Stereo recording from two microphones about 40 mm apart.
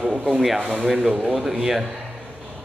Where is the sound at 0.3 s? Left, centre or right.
Centre.